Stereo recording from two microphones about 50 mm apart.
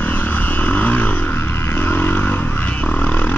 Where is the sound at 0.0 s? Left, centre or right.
Left.